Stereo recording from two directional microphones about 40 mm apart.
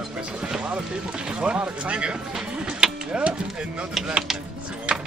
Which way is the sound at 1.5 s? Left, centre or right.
Right.